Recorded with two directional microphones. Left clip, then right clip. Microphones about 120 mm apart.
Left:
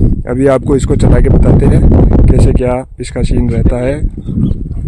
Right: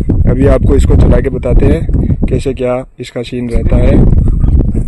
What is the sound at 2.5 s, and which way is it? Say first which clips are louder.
Speech: even; 30° left (ahead or behind).